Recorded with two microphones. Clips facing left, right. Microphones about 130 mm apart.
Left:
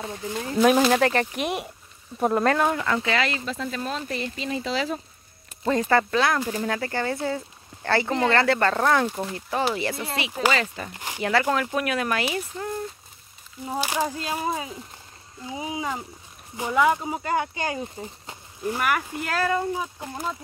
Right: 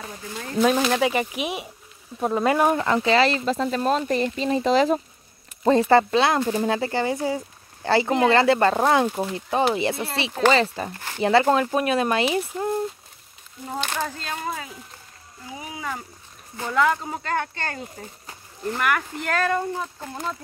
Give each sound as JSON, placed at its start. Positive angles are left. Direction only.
{"t": 0.0, "sound": "speech", "side_deg": 25}
{"t": 0.6, "sound": "speech", "side_deg": 5}
{"t": 2.4, "sound": "speech", "side_deg": -15}
{"t": 5.6, "sound": "speech", "side_deg": -30}
{"t": 13.7, "sound": "speech", "side_deg": 10}
{"t": 15.5, "sound": "speech", "side_deg": 20}